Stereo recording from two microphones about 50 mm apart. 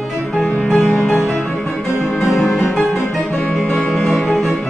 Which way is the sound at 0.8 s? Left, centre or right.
Centre.